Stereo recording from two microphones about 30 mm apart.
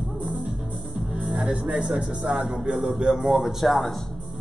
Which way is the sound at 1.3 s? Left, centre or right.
Right.